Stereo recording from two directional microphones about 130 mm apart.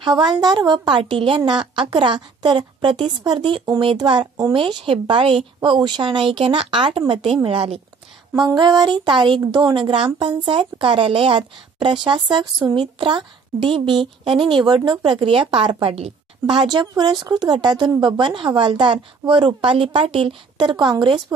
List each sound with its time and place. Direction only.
0.0 s a woman's voice: 35° right (ahead or behind)
8.5 s a woman's voice: 30° right (ahead or behind)